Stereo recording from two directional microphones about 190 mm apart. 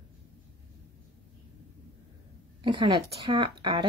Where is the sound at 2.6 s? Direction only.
25° right (ahead or behind).